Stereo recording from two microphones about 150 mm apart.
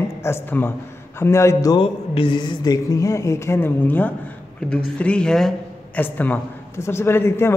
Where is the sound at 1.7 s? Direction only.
35° left (ahead or behind).